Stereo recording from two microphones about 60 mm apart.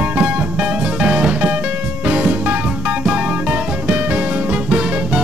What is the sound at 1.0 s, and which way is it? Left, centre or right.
Music, centre.